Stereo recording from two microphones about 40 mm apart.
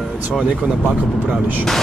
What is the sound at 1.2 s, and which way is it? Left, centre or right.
Speech, right.